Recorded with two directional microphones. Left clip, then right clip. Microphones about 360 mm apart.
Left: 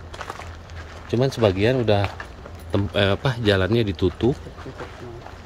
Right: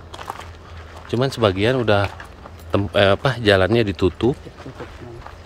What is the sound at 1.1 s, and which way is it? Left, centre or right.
Speech, centre.